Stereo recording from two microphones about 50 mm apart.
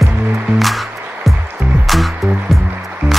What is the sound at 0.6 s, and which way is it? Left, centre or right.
Music, centre.